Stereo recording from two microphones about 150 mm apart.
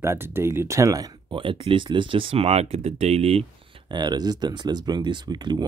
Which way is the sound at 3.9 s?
30° right (ahead or behind).